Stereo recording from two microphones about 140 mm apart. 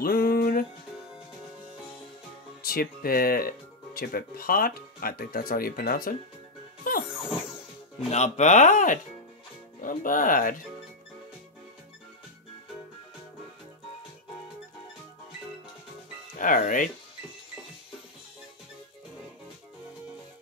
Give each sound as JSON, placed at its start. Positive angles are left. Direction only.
{"t": 0.0, "sound": "music", "side_deg": 90}
{"t": 2.6, "sound": "speech", "side_deg": 90}
{"t": 6.8, "sound": "music", "side_deg": 90}
{"t": 8.0, "sound": "speech", "side_deg": 55}
{"t": 16.3, "sound": "speech", "side_deg": 80}